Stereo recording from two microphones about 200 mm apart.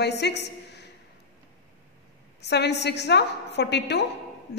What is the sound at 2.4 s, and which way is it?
A woman's voice, 55° left (ahead or behind).